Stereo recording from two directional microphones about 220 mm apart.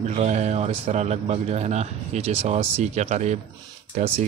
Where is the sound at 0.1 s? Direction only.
30° right (ahead or behind).